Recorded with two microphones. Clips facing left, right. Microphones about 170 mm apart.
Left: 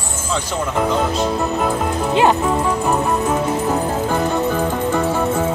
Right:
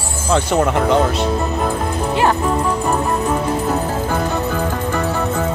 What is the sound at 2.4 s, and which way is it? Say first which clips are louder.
Music: even; 5° left (ahead or behind).